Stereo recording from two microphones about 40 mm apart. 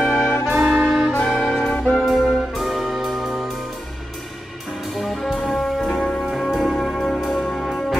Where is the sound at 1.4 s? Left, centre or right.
Left.